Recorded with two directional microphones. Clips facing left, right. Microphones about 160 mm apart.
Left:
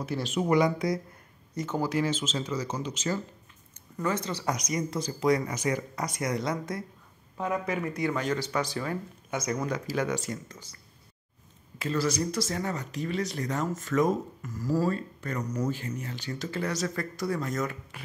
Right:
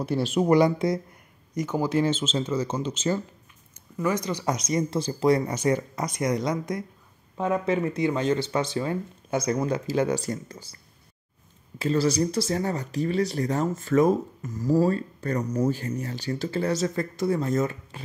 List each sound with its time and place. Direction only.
0.0 s speech: 35° right (ahead or behind)
1.5 s speech: 15° right (ahead or behind)
4.0 s speech: 15° right (ahead or behind); by 10.8 s 30° right (ahead or behind)
11.8 s speech: 30° right (ahead or behind)
14.4 s speech: 20° right (ahead or behind)
14.9 s speech: 35° right (ahead or behind)